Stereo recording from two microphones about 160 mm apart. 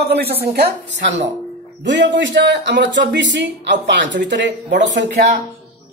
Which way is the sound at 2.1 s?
90° right.